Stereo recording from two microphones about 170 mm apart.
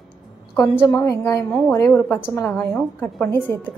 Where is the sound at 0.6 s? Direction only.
15° left (ahead or behind).